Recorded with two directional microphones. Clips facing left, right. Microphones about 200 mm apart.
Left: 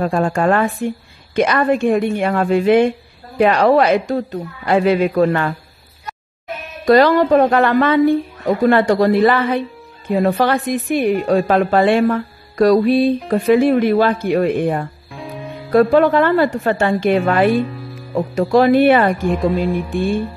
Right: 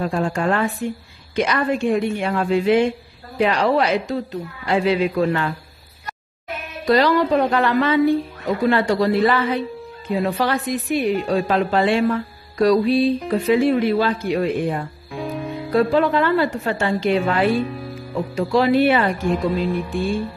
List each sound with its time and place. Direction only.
0.0 s a woman's voice: 55° left (ahead or behind)
6.9 s a woman's voice: 55° left (ahead or behind)